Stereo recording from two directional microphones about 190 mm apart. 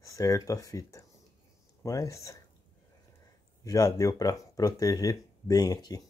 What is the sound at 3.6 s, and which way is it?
Speech, 20° left (ahead or behind).